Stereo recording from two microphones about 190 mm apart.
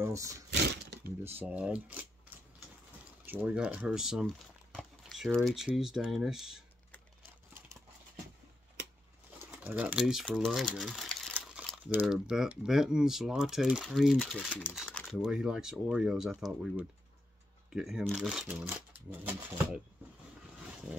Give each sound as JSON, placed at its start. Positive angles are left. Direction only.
{"t": 0.0, "sound": "speech", "side_deg": -15}
{"t": 0.5, "sound": "a sound", "side_deg": -60}
{"t": 1.2, "sound": "speech", "side_deg": -10}
{"t": 9.5, "sound": "speech", "side_deg": -10}
{"t": 14.8, "sound": "a sound", "side_deg": 0}
{"t": 15.1, "sound": "speech", "side_deg": -5}